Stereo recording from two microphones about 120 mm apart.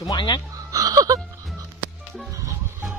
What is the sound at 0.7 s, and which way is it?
Music, 30° right (ahead or behind).